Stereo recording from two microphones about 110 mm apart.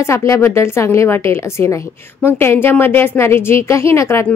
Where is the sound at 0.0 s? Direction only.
25° left (ahead or behind).